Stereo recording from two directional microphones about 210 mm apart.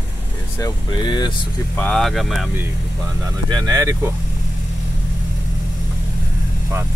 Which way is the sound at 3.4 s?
20° right (ahead or behind).